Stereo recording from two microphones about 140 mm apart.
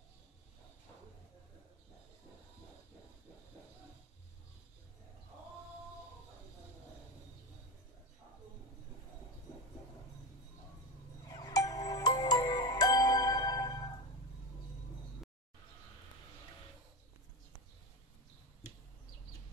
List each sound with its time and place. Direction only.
11.3 s music: 25° left (ahead or behind)